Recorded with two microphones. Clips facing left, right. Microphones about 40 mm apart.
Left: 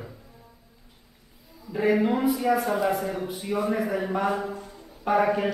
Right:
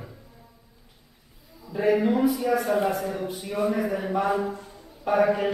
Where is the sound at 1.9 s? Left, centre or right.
Centre.